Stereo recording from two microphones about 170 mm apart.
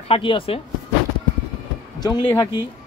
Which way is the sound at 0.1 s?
30° left (ahead or behind).